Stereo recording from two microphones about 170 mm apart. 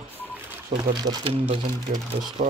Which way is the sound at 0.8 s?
20° right (ahead or behind).